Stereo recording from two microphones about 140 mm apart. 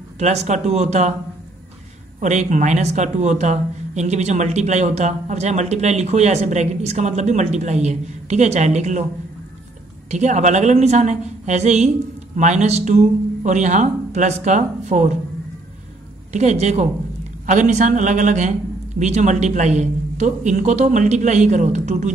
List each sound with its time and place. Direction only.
0.2 s speech: 55° right (ahead or behind)
2.1 s speech: 55° right (ahead or behind)
10.1 s speech: 60° right (ahead or behind)
16.3 s speech: 55° right (ahead or behind)